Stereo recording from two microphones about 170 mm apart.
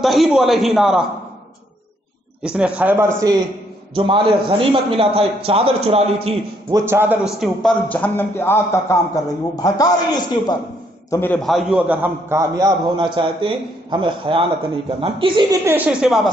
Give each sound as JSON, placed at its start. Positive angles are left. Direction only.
{"t": 0.0, "sound": "a man's voice", "side_deg": 0}
{"t": 2.4, "sound": "a man's voice", "side_deg": -5}
{"t": 3.9, "sound": "a man's voice", "side_deg": -30}
{"t": 6.7, "sound": "a man's voice", "side_deg": -15}
{"t": 7.9, "sound": "a man's voice", "side_deg": 10}
{"t": 11.3, "sound": "a man's voice", "side_deg": 0}
{"t": 15.6, "sound": "a man's voice", "side_deg": -10}